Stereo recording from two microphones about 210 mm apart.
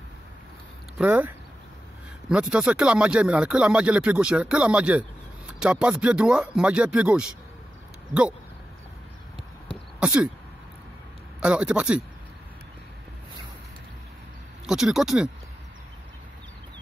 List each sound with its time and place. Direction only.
0.9 s speech: 10° right (ahead or behind)
9.9 s speech: 5° right (ahead or behind)
11.4 s speech: 5° right (ahead or behind)
14.7 s speech: centre (ahead or behind)